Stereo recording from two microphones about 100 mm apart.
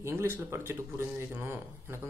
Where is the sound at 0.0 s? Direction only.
25° right (ahead or behind).